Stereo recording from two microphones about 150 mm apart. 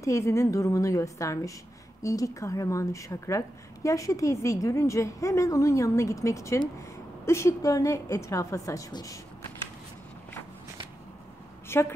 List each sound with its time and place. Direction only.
0.0 s a woman's voice: 20° left (ahead or behind)
11.7 s a woman's voice: 15° left (ahead or behind)